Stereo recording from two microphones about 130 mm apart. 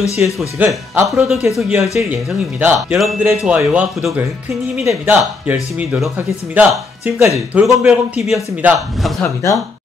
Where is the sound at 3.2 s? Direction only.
10° right (ahead or behind).